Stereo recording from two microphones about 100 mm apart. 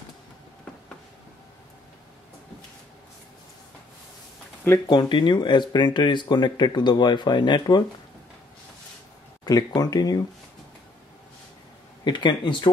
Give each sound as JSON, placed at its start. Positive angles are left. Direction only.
{"t": 4.8, "sound": "speech", "side_deg": 45}
{"t": 9.4, "sound": "a sound", "side_deg": 35}
{"t": 9.8, "sound": "speech", "side_deg": 40}
{"t": 12.0, "sound": "speech", "side_deg": 50}